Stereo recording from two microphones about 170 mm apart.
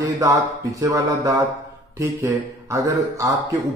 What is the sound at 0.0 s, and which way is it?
Speech, 20° right (ahead or behind).